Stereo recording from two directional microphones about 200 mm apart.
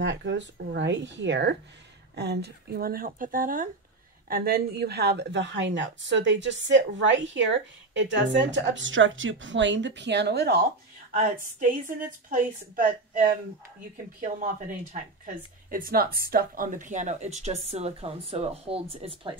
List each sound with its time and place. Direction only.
0.0 s a woman's voice: 65° right (ahead or behind)
11.1 s speech: 40° right (ahead or behind)